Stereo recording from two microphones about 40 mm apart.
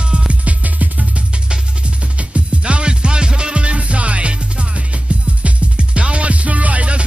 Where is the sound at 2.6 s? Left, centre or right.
Right.